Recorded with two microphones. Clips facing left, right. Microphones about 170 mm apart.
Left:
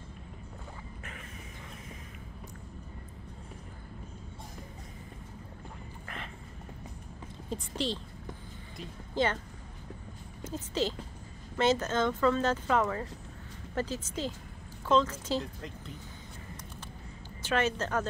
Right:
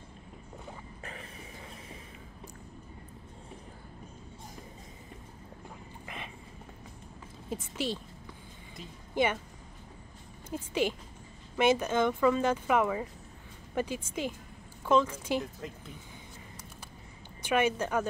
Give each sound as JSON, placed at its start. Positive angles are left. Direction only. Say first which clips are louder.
{"t": 6.0, "sound": "a sound", "louder": "even", "side_deg": -15}
{"t": 7.4, "sound": "a woman's voice", "louder": "even", "side_deg": -5}
{"t": 9.1, "sound": "a woman's voice", "louder": "right 1 dB", "side_deg": -10}
{"t": 10.4, "sound": "speech", "louder": "right 1 dB", "side_deg": -10}
{"t": 17.4, "sound": "speech", "louder": "right 2 dB", "side_deg": -15}